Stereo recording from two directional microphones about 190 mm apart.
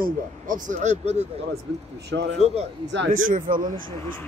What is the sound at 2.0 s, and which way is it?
Speech, 65° right (ahead or behind).